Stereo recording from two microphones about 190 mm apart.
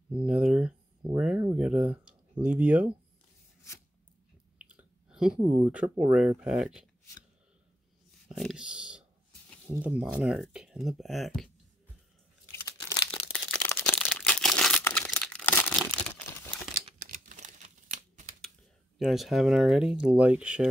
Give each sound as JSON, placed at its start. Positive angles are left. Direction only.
{"t": 0.1, "sound": "speech", "side_deg": -5}
{"t": 4.6, "sound": "speech", "side_deg": -5}
{"t": 8.3, "sound": "speech", "side_deg": 0}
{"t": 12.4, "sound": "tearing", "side_deg": 15}
{"t": 13.2, "sound": "crumpling", "side_deg": 10}
{"t": 16.8, "sound": "a sound", "side_deg": -40}
{"t": 18.9, "sound": "speech", "side_deg": 0}